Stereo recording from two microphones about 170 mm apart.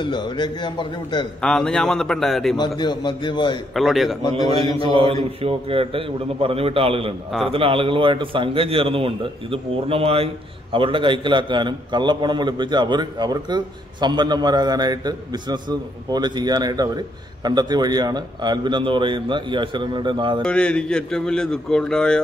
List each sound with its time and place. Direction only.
0.0 s a man's voice: 25° left (ahead or behind)
1.4 s a man's voice: 5° left (ahead or behind)
2.8 s a man's voice: 25° left (ahead or behind)
3.7 s a man's voice: centre (ahead or behind)
4.7 s a man's voice: 35° right (ahead or behind)
20.4 s a man's voice: 5° left (ahead or behind)